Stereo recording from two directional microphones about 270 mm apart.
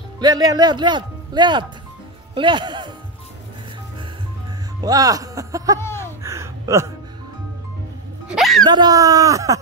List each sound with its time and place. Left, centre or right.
0.2 s a man's voice: centre
4.8 s speech: centre
5.8 s a sound: centre
6.2 s a sound: centre
8.4 s music: centre
8.6 s a man's voice: centre